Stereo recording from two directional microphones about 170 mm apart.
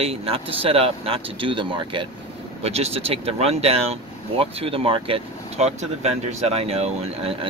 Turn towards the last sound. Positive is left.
turn(degrees=-35)  # may be behind; listen again after turning